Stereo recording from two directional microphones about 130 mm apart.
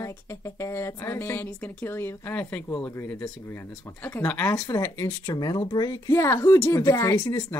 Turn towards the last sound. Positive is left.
turn(degrees=15)  # may be behind; listen again after turning